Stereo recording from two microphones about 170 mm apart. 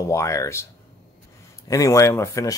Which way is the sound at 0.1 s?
20° left (ahead or behind).